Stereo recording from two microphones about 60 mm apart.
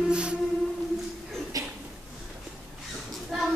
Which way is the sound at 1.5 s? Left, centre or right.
Right.